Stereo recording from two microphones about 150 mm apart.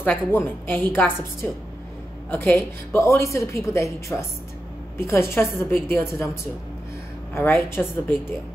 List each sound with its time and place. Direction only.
0.0 s a woman's voice: 15° left (ahead or behind)
7.3 s a woman's voice: 15° left (ahead or behind)